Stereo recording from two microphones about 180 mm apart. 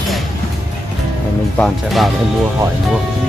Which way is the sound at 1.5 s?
5° left (ahead or behind).